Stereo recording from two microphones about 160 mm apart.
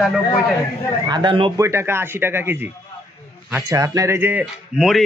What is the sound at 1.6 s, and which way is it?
A man's voice, 15° right (ahead or behind).